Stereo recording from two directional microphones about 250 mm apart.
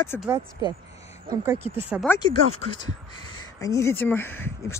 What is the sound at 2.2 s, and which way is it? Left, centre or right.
Speech, centre.